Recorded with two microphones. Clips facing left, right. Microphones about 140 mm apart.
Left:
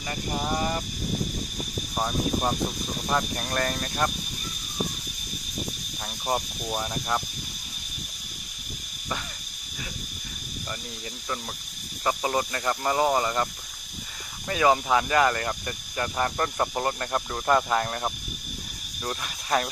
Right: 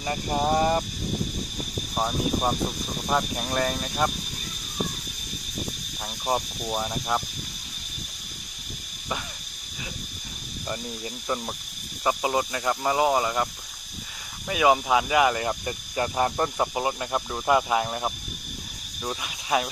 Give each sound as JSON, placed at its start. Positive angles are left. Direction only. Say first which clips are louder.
{"t": 0.4, "sound": "speech", "louder": "right 6 dB", "side_deg": -40}
{"t": 2.0, "sound": "speech", "louder": "right 1 dB", "side_deg": -10}
{"t": 6.2, "sound": "speech", "louder": "right 2 dB", "side_deg": -10}
{"t": 11.2, "sound": "cricket", "louder": "right 4 dB", "side_deg": -25}
{"t": 12.0, "sound": "speech", "louder": "right 1 dB", "side_deg": -10}
{"t": 14.5, "sound": "speech", "louder": "right 1 dB", "side_deg": -10}
{"t": 16.5, "sound": "speech", "louder": "right 1 dB", "side_deg": -5}